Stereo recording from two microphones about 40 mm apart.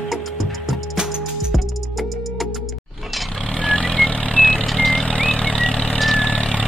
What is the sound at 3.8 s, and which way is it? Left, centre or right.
Vehicle, centre.